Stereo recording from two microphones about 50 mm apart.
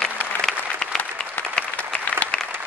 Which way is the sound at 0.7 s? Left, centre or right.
Centre.